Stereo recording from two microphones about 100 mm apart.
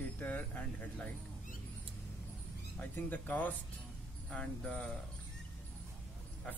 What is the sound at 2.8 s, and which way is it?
Speech, 15° left (ahead or behind).